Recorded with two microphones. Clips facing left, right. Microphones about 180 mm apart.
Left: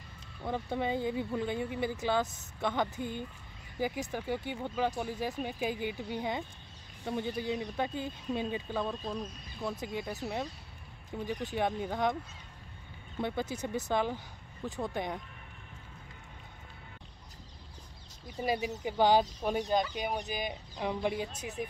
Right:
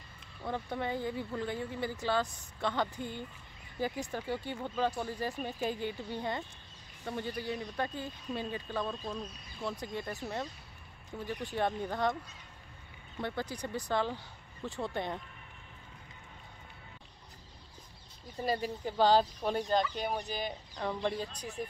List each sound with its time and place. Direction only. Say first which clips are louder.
0.4 s speech: left 2 dB; 15° left (ahead or behind)
13.2 s speech: left 3 dB; 15° left (ahead or behind)
18.4 s speech: left 1 dB; 15° left (ahead or behind)
21.3 s speech: left 2 dB; 25° left (ahead or behind)